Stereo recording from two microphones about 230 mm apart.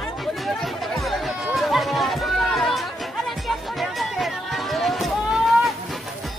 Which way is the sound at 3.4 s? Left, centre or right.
Centre.